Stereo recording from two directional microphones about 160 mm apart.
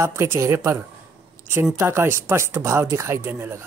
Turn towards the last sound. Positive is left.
turn(degrees=-15)  # may be behind; listen again after turning